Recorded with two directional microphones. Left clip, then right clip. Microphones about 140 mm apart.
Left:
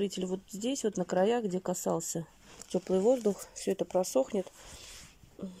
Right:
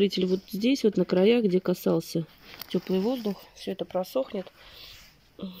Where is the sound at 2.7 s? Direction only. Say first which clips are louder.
Left 1 dB; centre (ahead or behind).